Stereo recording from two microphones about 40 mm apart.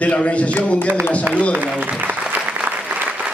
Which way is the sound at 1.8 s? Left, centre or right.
Right.